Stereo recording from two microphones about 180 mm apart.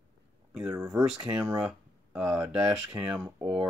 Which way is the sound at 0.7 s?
20° right (ahead or behind).